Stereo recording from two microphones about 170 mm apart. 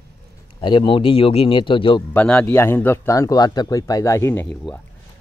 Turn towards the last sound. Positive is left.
turn(degrees=10)  # may be behind; listen again after turning